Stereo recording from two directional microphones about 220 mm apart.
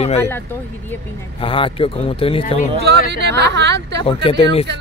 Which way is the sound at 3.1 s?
50° right (ahead or behind).